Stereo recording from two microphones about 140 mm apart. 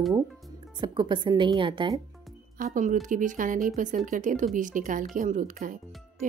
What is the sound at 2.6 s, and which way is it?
Speech, 70° right (ahead or behind).